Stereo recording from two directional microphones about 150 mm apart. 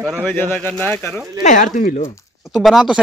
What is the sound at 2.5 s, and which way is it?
Speech, centre (ahead or behind).